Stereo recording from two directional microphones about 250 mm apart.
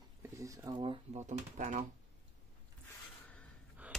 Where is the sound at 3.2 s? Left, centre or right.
Centre.